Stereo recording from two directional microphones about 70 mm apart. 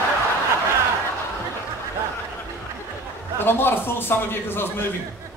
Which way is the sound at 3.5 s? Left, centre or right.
Left.